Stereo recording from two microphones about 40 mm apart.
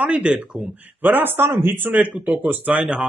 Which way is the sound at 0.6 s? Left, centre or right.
Right.